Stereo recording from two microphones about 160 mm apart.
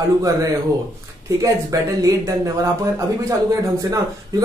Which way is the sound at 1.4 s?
20° right (ahead or behind).